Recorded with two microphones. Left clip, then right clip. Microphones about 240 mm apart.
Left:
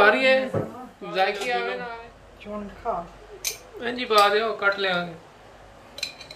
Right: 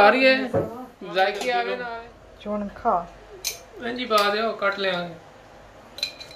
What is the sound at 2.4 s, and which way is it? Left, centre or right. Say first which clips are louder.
Speech: right 6 dB; right.